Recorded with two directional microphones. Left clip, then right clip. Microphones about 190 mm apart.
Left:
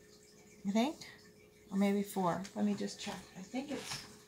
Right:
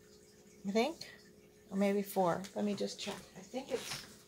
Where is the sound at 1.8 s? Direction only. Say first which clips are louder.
Right 3 dB; 30° right (ahead or behind).